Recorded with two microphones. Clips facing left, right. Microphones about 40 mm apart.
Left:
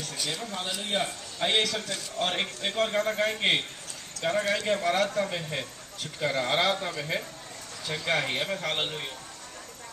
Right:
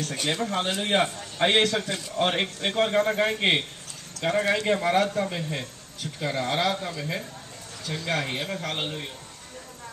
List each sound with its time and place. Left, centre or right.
0.0 s a man's voice: right
1.9 s a man's voice: right; by 9.1 s centre